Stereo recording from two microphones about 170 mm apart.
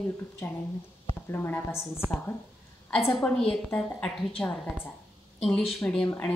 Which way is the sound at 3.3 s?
5° left (ahead or behind).